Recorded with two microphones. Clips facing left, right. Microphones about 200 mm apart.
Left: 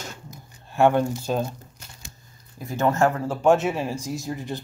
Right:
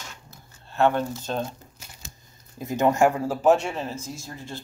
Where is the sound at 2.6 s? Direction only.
20° right (ahead or behind).